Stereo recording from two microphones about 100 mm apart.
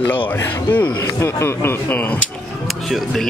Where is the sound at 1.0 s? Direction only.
30° left (ahead or behind).